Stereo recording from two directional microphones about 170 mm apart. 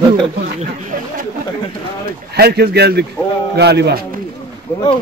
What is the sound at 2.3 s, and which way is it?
Speech, 70° right (ahead or behind).